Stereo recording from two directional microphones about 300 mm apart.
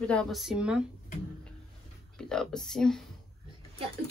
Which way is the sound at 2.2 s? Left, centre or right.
Centre.